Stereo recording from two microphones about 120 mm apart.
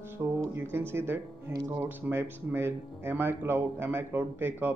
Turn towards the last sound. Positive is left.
turn(degrees=-15)  # may be behind; listen again after turning